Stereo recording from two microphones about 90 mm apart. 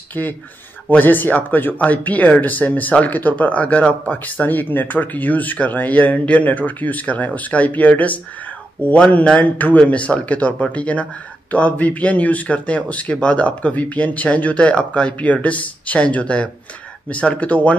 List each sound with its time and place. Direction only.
0.1 s speech: 20° left (ahead or behind)